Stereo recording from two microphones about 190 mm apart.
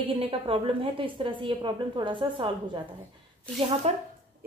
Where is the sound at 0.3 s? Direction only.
30° right (ahead or behind).